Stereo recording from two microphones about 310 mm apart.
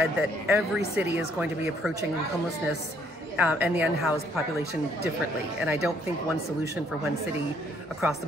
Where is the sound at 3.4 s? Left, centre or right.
Centre.